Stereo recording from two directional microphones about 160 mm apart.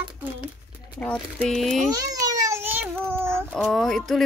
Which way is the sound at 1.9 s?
25° right (ahead or behind).